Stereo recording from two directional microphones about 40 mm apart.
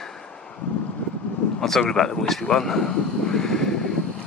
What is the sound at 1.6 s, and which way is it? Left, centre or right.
A man's voice, centre.